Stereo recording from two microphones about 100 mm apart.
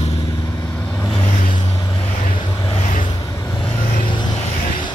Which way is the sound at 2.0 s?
55° left (ahead or behind).